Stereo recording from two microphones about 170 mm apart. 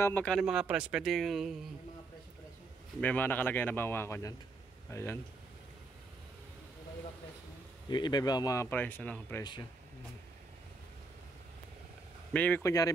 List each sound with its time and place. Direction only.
0.0 s speech: 10° left (ahead or behind)
3.0 s speech: 10° left (ahead or behind)
7.9 s speech: 25° left (ahead or behind); by 9.4 s 10° left (ahead or behind)
9.4 s speech: 25° left (ahead or behind)
12.3 s speech: 10° left (ahead or behind)